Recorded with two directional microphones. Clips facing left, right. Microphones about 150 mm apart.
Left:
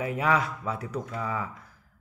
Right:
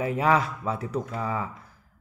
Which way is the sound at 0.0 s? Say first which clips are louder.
Right 3 dB; 30° right (ahead or behind).